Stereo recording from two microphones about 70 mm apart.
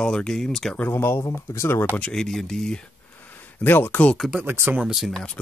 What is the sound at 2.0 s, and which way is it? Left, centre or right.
Speech, centre.